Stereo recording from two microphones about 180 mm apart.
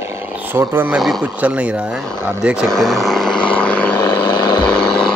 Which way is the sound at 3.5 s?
5° left (ahead or behind).